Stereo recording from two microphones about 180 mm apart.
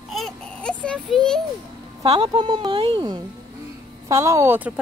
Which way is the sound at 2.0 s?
25° right (ahead or behind).